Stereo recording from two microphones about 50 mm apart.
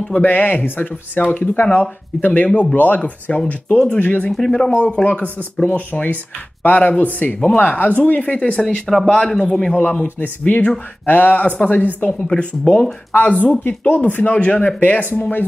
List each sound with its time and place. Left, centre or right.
0.1 s speech: left
1.3 s speech: left
3.0 s speech: left
3.4 s speech: left
5.7 s speech: left
8.5 s speech: centre
10.1 s speech: left
12.4 s speech: left
13.1 s speech: left